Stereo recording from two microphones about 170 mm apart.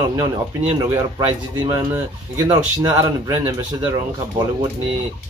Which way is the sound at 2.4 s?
25° right (ahead or behind).